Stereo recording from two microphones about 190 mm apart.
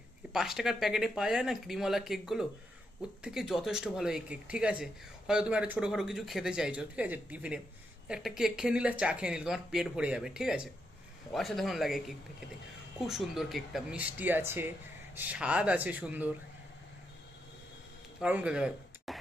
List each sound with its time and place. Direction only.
0.3 s speech: centre (ahead or behind)
13.0 s speech: centre (ahead or behind)
18.2 s speech: 5° right (ahead or behind)